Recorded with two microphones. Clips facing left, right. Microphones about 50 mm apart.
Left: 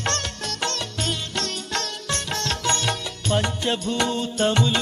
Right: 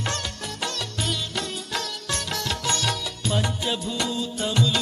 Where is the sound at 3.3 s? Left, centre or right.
Left.